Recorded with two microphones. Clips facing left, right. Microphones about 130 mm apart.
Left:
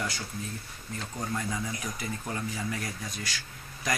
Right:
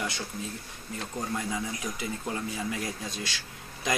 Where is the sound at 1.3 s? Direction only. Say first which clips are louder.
Even; 15° right (ahead or behind).